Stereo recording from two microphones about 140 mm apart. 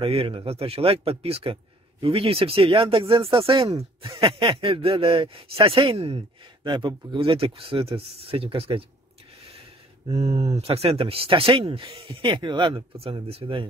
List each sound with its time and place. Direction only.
0.0 s speech: 40° right (ahead or behind)
10.1 s speech: 50° right (ahead or behind)